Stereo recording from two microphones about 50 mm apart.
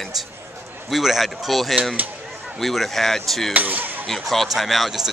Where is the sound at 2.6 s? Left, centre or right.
Centre.